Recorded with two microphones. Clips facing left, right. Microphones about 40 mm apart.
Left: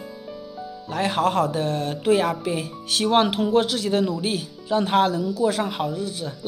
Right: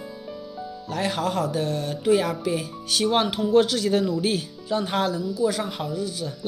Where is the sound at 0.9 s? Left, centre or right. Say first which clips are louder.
Left 4 dB; left.